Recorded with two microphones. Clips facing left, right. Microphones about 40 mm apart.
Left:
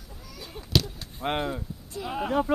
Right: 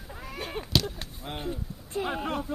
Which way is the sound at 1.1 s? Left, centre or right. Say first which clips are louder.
Left 10 dB; left.